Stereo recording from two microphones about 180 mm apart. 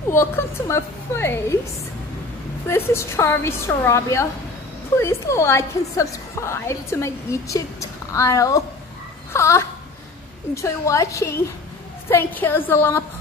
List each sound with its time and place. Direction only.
0.1 s a woman's voice: 15° left (ahead or behind)
2.7 s a woman's voice: 15° left (ahead or behind)
9.3 s a sound: 15° left (ahead or behind)
10.5 s a woman's voice: 15° left (ahead or behind)